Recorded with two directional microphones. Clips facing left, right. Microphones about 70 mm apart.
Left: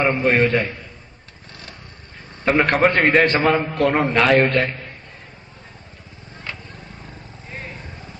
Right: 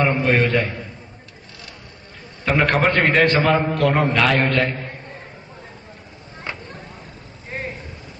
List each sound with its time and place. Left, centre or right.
0.0 s a man's voice: left
2.4 s a man's voice: left
6.5 s a sound: centre